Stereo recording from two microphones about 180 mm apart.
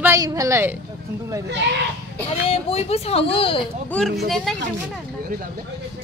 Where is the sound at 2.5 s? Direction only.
35° left (ahead or behind).